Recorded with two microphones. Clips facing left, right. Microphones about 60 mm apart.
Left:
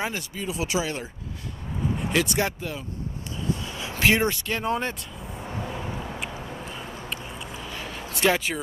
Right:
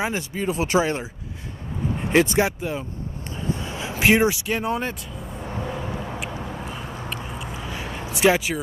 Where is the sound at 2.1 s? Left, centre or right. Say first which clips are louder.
Right 7 dB; right.